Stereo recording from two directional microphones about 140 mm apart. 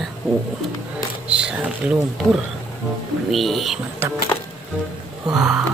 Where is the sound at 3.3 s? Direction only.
Centre (ahead or behind).